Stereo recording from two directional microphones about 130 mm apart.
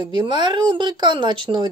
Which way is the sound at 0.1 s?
35° right (ahead or behind).